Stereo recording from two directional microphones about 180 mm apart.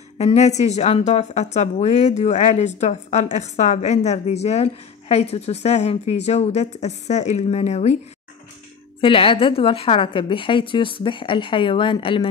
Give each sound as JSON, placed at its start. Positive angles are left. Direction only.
{"t": 0.2, "sound": "a woman's voice", "side_deg": 40}
{"t": 9.0, "sound": "a woman's voice", "side_deg": 30}